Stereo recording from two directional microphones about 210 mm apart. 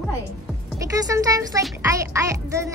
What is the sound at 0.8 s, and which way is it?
A woman's voice, 15° right (ahead or behind).